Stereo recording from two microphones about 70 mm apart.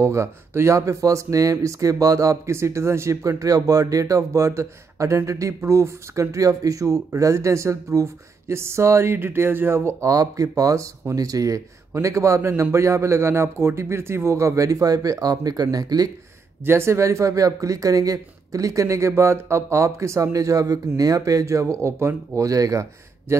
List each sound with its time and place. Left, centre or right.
0.0 s speech: right
10.0 s speech: right
16.6 s speech: right